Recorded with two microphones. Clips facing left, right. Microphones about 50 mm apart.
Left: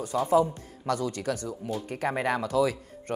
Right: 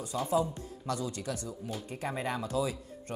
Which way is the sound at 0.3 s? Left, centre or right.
Left.